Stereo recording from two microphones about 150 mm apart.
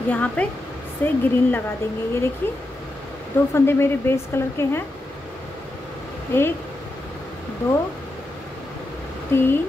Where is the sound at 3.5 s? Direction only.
15° left (ahead or behind).